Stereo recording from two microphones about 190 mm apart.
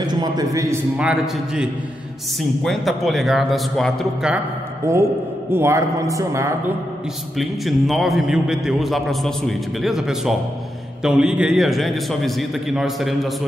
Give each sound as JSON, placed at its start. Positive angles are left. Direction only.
{"t": 0.0, "sound": "a man's voice", "side_deg": -20}
{"t": 0.9, "sound": "a man's voice", "side_deg": -5}
{"t": 4.9, "sound": "a man's voice", "side_deg": -15}
{"t": 7.3, "sound": "a man's voice", "side_deg": 0}